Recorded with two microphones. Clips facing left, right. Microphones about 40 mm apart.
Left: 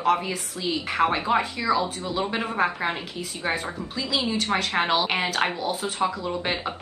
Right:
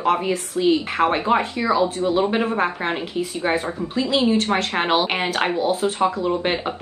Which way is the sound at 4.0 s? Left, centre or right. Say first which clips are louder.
Right 7 dB; right.